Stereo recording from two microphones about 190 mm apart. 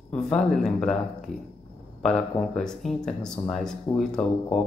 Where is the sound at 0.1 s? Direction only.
5° left (ahead or behind).